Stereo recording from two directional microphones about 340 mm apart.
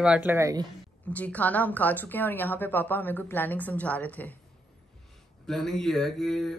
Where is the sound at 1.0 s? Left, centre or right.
Centre.